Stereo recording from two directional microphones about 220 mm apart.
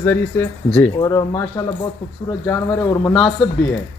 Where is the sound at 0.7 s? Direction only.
5° left (ahead or behind).